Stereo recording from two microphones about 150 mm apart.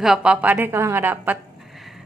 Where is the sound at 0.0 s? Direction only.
5° right (ahead or behind).